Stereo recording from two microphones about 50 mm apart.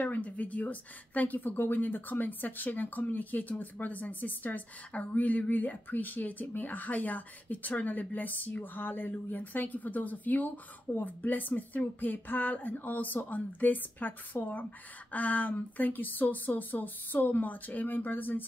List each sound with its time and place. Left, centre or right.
0.0 s speech: left